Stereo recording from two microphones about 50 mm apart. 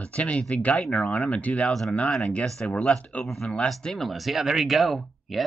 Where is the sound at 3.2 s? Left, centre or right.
Centre.